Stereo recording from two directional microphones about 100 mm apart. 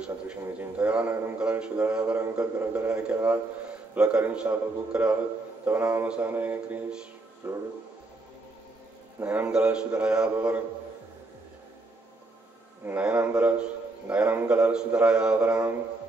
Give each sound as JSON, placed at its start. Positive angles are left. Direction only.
{"t": 0.0, "sound": "a man's voice", "side_deg": -15}
{"t": 9.2, "sound": "a man's voice", "side_deg": -15}
{"t": 12.8, "sound": "a man's voice", "side_deg": -15}